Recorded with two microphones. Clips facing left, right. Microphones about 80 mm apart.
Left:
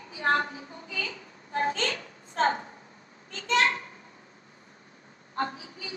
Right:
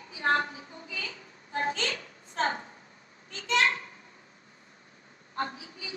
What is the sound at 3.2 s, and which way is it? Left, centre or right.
Speech, left.